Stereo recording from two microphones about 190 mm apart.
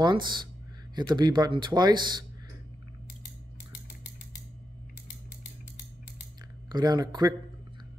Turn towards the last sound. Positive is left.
turn(degrees=-20)  # may be behind; listen again after turning